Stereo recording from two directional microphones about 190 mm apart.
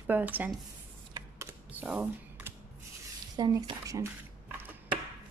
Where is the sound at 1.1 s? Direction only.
10° right (ahead or behind).